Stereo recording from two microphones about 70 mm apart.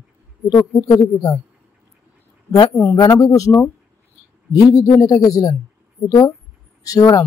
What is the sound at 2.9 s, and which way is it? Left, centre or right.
Speech, left.